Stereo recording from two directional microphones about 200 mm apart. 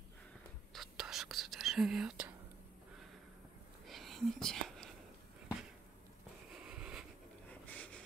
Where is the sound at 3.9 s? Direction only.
Centre (ahead or behind).